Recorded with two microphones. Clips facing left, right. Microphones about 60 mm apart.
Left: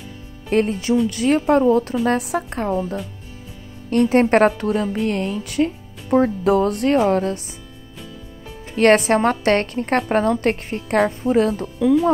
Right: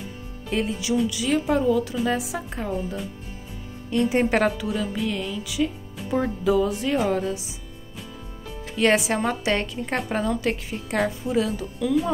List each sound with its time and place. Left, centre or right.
0.5 s a woman's voice: left
2.0 s a woman's voice: left
8.7 s a woman's voice: left